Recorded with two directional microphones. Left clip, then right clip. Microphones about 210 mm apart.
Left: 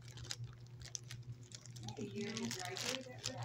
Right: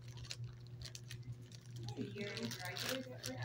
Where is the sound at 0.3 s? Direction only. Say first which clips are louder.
Left 2 dB; 50° left (ahead or behind).